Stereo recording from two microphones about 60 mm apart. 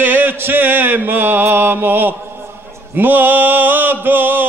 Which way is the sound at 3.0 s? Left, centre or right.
Right.